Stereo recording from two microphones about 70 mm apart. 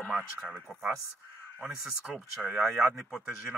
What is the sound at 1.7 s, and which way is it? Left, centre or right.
Speech, centre.